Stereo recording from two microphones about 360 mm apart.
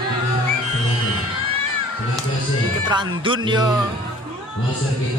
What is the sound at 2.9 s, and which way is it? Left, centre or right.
Speech, centre.